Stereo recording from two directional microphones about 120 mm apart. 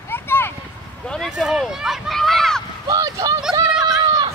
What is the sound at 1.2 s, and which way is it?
Speech, 5° right (ahead or behind).